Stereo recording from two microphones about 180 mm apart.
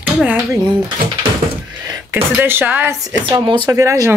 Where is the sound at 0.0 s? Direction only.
10° right (ahead or behind).